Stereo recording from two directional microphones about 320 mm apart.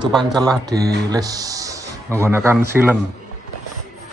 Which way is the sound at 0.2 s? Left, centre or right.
Centre.